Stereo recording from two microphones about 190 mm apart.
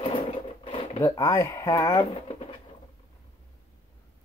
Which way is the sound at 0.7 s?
20° left (ahead or behind).